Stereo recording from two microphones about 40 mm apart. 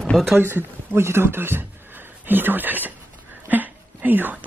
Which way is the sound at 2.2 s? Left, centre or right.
Right.